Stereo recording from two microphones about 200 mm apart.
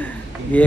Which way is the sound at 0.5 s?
5° left (ahead or behind).